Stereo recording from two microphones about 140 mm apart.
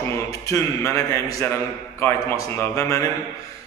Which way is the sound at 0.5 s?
20° left (ahead or behind).